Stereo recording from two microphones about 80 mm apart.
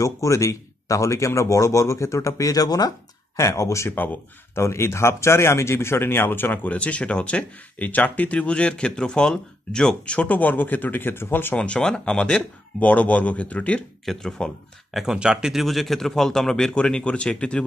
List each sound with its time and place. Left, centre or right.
0.0 s speech: left
3.3 s speech: left
3.9 s speech: left
4.6 s speech: left
11.5 s speech: centre
14.0 s speech: centre